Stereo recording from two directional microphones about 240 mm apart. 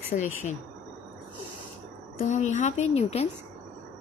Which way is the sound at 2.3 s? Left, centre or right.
Left.